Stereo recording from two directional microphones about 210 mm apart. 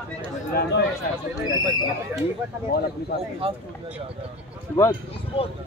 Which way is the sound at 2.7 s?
45° left (ahead or behind).